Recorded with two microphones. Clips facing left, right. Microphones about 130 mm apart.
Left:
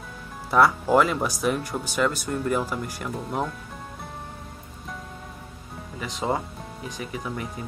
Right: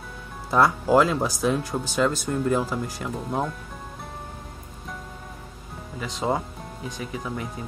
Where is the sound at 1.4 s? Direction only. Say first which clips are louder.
Right 1 dB; centre (ahead or behind).